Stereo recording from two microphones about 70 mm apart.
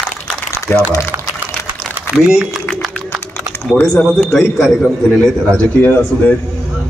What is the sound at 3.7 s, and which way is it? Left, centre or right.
Speech, centre.